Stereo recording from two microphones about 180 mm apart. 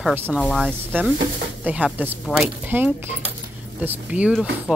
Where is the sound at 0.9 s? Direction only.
10° right (ahead or behind).